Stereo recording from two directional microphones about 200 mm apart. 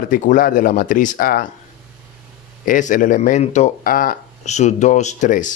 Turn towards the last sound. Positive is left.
turn(degrees=40)  # may be behind; listen again after turning